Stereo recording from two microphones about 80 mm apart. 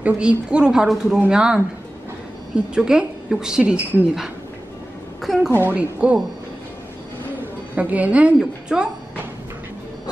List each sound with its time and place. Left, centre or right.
0.0 s a woman's voice: centre
5.2 s a woman's voice: centre
5.6 s a woman's voice: centre
7.7 s a woman's voice: centre